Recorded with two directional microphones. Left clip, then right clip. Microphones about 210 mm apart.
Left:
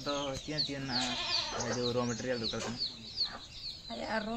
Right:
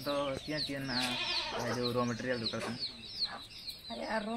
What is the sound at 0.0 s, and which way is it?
Speech, 30° left (ahead or behind).